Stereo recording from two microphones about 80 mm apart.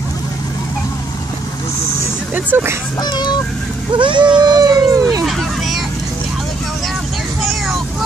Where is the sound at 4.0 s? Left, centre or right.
Right.